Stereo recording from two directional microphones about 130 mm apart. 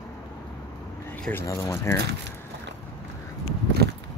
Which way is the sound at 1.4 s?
20° left (ahead or behind).